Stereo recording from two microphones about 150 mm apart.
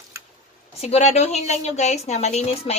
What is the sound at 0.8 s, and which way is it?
A woman's voice, 45° left (ahead or behind).